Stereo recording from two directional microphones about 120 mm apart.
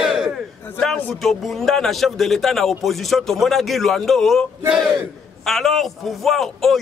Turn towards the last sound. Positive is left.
turn(degrees=0)  # may be behind; listen again after turning